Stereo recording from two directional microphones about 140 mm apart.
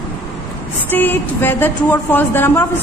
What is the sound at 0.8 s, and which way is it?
Speech, 15° left (ahead or behind).